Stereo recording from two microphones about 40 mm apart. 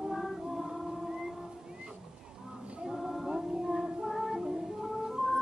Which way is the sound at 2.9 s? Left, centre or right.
Centre.